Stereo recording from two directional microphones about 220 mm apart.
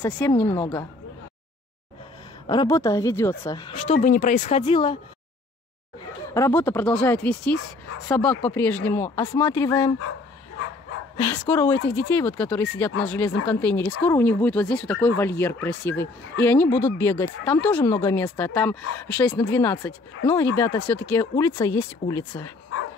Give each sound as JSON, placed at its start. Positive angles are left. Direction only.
{"t": 0.0, "sound": "speech", "side_deg": 10}
{"t": 2.4, "sound": "speech", "side_deg": 20}
{"t": 6.3, "sound": "speech", "side_deg": 10}
{"t": 11.2, "sound": "speech", "side_deg": 10}